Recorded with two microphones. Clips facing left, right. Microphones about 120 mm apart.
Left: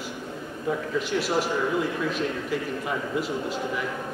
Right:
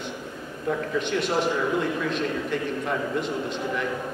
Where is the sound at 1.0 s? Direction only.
5° left (ahead or behind).